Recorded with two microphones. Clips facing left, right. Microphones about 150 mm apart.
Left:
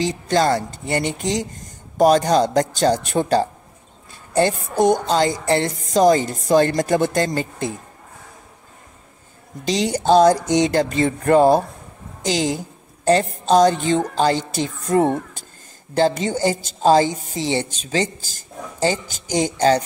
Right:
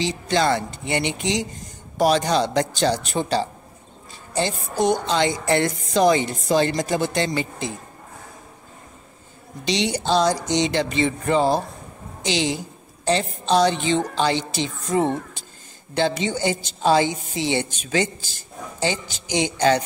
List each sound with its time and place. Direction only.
0.0 s a woman's voice: 45° left (ahead or behind)
5.0 s a woman's voice: 40° left (ahead or behind)
9.7 s a woman's voice: 45° left (ahead or behind)
15.9 s a woman's voice: 40° left (ahead or behind)